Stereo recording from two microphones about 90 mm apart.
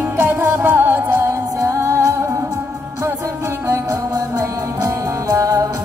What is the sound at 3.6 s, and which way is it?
Music, 35° right (ahead or behind).